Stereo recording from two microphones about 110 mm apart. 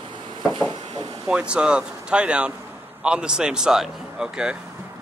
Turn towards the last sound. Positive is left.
turn(degrees=-10)  # may be behind; listen again after turning